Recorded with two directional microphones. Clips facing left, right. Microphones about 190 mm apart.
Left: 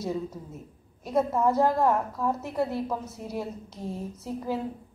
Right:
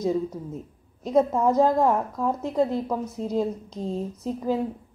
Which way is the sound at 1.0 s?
15° right (ahead or behind).